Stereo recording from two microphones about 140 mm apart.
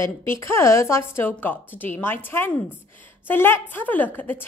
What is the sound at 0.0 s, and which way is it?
A woman's voice, 20° left (ahead or behind).